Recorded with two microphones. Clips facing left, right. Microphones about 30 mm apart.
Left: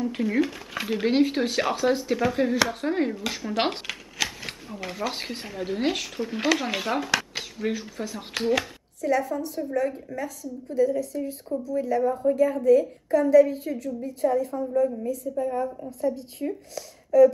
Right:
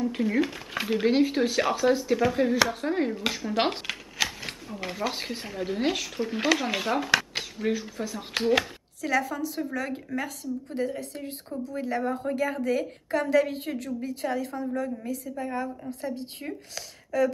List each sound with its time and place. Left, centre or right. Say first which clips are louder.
0.0 s speech: left 1 dB; centre
3.8 s a sound: even; centre
4.7 s speech: even; centre
8.4 s speech: right 1 dB; centre
9.0 s a woman's voice: left 2 dB; right
9.8 s speech: left 9 dB; right
10.1 s a woman's voice: even; right
10.7 s a woman's voice: left 10 dB; right
14.0 s a woman's voice: left 8 dB; right
16.1 s speech: left 8 dB; right
16.7 s speech: left 9 dB; right